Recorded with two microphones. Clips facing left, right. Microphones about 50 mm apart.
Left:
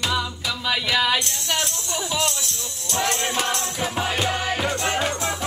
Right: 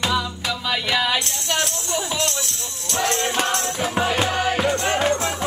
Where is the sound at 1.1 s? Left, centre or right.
Centre.